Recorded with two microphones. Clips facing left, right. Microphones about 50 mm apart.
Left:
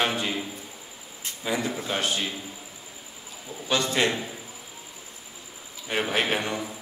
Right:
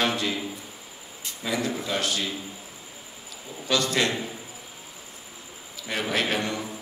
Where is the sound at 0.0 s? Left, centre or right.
Left.